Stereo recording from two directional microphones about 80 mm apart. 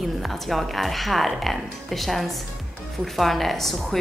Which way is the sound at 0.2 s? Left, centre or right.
Centre.